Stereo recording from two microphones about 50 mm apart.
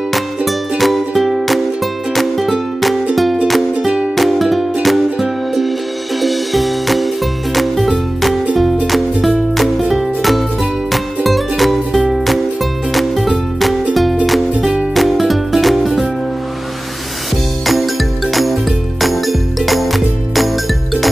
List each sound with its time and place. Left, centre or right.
0.5 s music: centre
3.8 s music: centre
4.2 s music: centre
15.0 s music: centre
17.6 s jingle: centre